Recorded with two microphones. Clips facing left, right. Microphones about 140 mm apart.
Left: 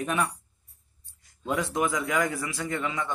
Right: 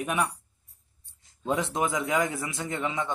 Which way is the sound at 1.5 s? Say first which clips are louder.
Even; 20° right (ahead or behind).